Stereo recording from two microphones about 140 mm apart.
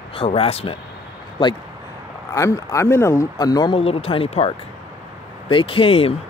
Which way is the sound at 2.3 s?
20° left (ahead or behind).